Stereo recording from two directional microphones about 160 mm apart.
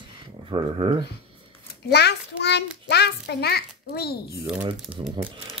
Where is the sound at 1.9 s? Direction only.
90° left.